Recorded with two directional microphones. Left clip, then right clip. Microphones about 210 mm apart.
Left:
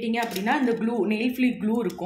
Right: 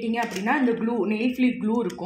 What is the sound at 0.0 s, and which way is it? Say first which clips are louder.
Speech: even; 15° right (ahead or behind).